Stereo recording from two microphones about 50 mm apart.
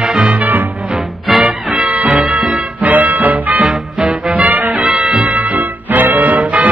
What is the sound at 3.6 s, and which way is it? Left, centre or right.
Music, centre.